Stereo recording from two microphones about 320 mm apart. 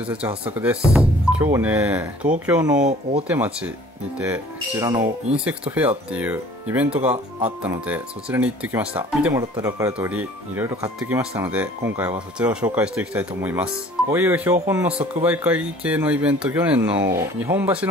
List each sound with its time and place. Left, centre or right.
0.0 s speech: centre
2.9 s speech: centre
3.3 s speech: centre